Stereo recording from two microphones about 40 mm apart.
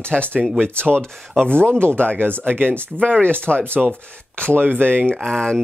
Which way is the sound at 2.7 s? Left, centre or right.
Left.